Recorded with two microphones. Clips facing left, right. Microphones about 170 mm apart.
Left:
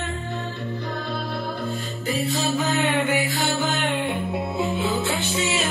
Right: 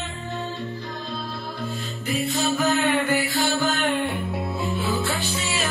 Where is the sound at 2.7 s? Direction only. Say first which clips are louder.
Right 2 dB; 20° left (ahead or behind).